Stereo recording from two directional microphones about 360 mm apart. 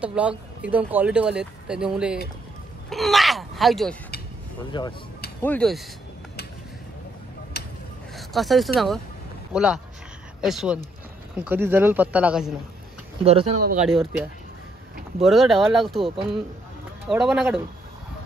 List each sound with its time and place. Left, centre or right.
0.0 s speech: centre
2.9 s groan: centre
4.7 s speech: centre
7.5 s a sound: left
8.2 s a sound: centre
8.7 s speech: centre
13.2 s speech: centre
15.2 s speech: centre
17.1 s speech: centre